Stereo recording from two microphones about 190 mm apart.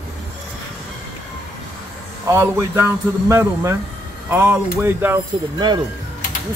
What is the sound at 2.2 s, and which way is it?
A man's voice, 15° right (ahead or behind).